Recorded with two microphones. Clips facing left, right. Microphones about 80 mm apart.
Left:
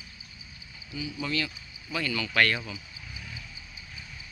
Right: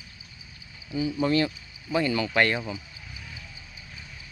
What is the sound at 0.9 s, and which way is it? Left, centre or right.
Speech, right.